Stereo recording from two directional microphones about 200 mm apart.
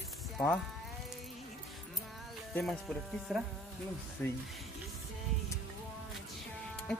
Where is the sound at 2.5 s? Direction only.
Centre (ahead or behind).